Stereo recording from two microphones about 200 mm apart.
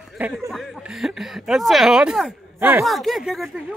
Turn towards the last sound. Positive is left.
turn(degrees=0)  # may be behind; listen again after turning